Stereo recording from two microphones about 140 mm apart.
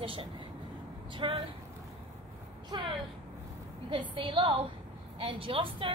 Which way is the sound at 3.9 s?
35° right (ahead or behind).